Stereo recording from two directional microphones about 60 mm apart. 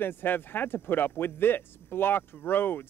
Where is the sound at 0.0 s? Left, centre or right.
Left.